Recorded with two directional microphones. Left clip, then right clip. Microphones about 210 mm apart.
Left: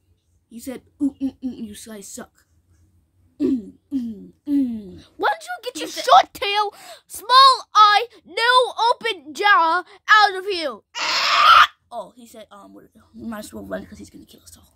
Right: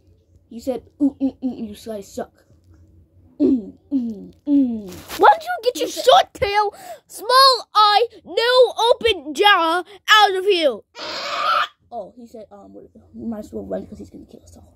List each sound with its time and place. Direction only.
0.5 s speech: 35° left (ahead or behind)
3.3 s throat clearing: 35° left (ahead or behind)
5.2 s a woman's voice: centre (ahead or behind)
10.9 s pig: 50° left (ahead or behind)
12.2 s speech: 50° left (ahead or behind)
12.6 s speech: 60° left (ahead or behind); by 14.6 s 40° left (ahead or behind)